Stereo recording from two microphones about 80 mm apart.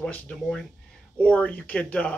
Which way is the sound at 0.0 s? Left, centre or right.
Centre.